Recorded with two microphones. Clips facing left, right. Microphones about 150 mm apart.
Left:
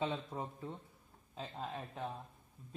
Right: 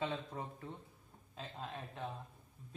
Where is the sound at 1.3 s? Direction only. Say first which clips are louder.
Left 3 dB; 10° left (ahead or behind).